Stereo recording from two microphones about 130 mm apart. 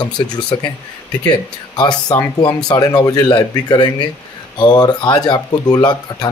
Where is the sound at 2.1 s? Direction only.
30° left (ahead or behind).